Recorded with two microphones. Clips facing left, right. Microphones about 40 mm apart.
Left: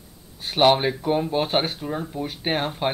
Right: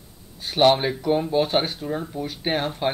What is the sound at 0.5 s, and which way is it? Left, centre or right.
Speech, centre.